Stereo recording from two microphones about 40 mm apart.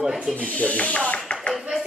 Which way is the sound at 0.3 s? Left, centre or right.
Left.